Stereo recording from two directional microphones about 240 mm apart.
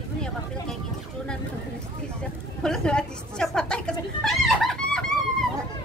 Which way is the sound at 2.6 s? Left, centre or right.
Centre.